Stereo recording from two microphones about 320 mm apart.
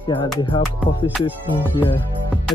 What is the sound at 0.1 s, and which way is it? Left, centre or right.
Speech, centre.